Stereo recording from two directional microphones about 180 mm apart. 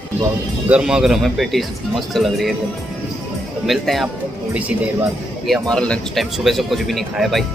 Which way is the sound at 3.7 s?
Centre (ahead or behind).